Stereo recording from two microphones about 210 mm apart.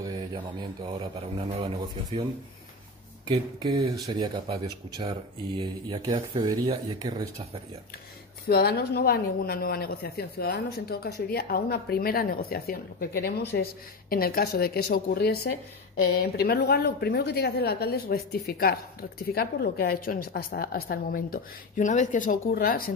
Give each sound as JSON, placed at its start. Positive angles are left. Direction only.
{"t": 0.0, "sound": "speech", "side_deg": -20}
{"t": 3.3, "sound": "speech", "side_deg": -20}
{"t": 5.6, "sound": "speech", "side_deg": -20}
{"t": 8.5, "sound": "a woman's voice", "side_deg": 45}